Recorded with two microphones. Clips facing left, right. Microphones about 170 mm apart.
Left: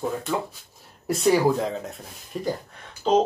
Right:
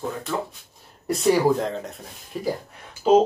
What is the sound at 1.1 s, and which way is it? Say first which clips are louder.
Speech: right 1 dB; centre (ahead or behind).